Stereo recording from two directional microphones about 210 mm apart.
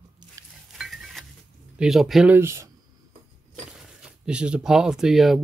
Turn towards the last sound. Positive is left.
turn(degrees=0)  # may be behind; listen again after turning